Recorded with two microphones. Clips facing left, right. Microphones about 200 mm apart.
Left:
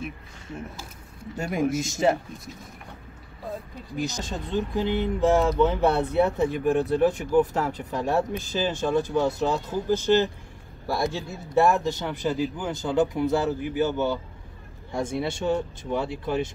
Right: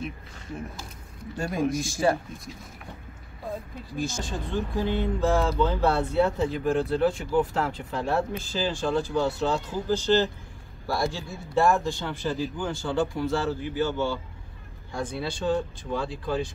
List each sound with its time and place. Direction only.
1.3 s speech: 20° left (ahead or behind)
4.0 s speech: 20° left (ahead or behind)